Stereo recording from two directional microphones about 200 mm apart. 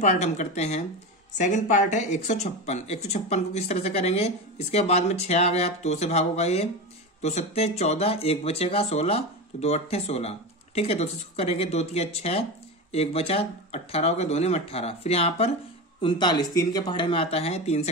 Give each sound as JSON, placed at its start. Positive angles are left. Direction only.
{"t": 0.0, "sound": "speech", "side_deg": 35}